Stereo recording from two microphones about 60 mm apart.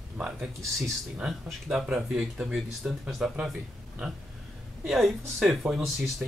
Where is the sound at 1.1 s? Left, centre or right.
Centre.